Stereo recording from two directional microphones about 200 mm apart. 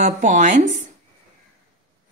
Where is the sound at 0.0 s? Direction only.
35° right (ahead or behind).